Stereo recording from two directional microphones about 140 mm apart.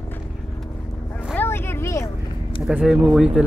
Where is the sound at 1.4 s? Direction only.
15° left (ahead or behind).